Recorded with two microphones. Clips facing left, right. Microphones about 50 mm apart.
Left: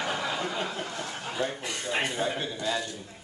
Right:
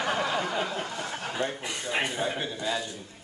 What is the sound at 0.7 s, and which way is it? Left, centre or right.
A man's voice, centre.